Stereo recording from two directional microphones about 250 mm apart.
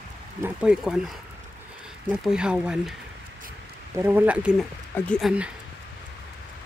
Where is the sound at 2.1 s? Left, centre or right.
Centre.